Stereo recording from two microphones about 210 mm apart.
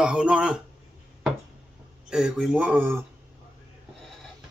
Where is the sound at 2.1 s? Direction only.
5° right (ahead or behind).